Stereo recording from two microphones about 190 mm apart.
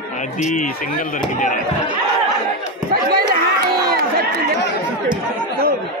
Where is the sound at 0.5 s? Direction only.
45° left (ahead or behind).